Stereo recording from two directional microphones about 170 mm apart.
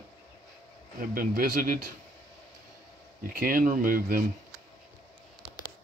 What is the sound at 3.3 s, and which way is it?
Speech, 55° right (ahead or behind).